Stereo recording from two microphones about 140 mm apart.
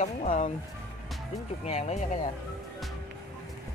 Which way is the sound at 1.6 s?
50° left (ahead or behind).